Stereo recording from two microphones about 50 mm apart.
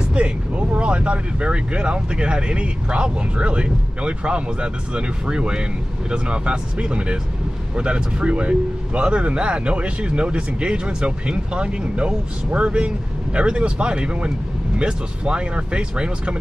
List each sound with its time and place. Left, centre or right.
0.1 s speech: right